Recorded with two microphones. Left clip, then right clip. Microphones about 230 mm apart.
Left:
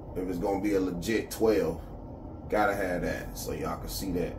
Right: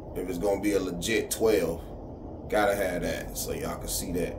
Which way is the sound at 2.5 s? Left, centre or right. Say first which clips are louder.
Right 2 dB; right.